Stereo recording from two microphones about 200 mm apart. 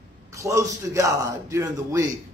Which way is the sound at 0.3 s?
15° right (ahead or behind).